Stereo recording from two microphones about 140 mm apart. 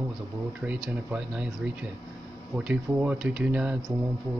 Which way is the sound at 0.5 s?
10° right (ahead or behind).